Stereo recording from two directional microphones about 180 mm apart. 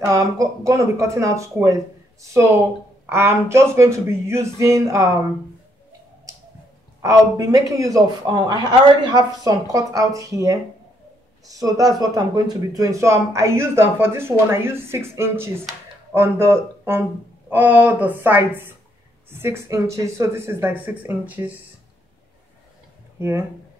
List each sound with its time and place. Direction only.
0.0 s speech: 20° right (ahead or behind)
3.1 s speech: 15° right (ahead or behind)
7.0 s a man's voice: 15° right (ahead or behind)